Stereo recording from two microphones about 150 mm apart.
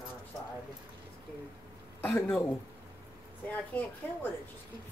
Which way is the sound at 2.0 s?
10° left (ahead or behind).